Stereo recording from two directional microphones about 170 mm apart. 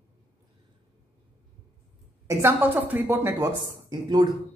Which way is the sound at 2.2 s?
10° right (ahead or behind).